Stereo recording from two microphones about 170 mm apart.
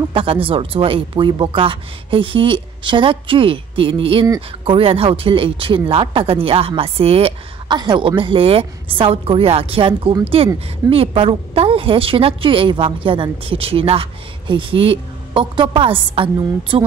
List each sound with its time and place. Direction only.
0.1 s speech: 30° right (ahead or behind)